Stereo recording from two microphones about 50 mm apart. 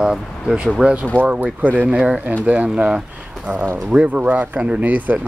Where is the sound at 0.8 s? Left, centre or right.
Right.